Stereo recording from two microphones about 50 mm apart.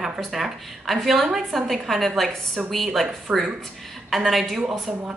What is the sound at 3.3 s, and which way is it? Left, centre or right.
Speech, right.